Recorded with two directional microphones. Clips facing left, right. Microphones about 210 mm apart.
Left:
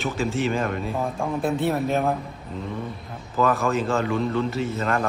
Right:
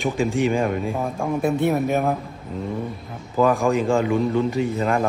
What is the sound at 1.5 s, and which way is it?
Speech, 15° right (ahead or behind).